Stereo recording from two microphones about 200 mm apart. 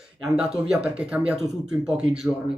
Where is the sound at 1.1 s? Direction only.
5° right (ahead or behind).